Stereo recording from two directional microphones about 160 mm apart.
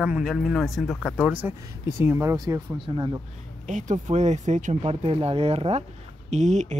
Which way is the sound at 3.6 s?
50° right (ahead or behind).